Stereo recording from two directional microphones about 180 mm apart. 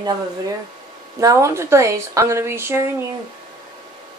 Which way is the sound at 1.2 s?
15° right (ahead or behind).